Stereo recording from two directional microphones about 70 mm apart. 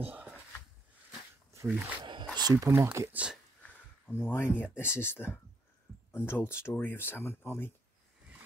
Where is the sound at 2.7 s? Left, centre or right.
Right.